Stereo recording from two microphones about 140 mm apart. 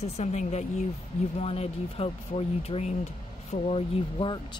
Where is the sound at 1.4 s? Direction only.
45° left (ahead or behind).